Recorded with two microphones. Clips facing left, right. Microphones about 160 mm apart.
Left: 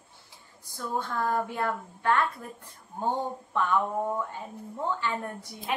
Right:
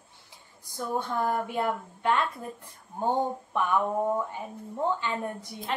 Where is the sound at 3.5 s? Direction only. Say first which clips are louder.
Even; 15° right (ahead or behind).